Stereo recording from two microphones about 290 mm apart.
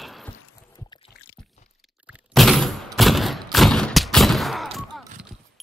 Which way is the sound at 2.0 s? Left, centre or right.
Centre.